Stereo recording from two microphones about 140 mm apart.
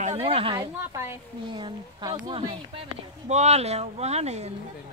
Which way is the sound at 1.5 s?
30° right (ahead or behind).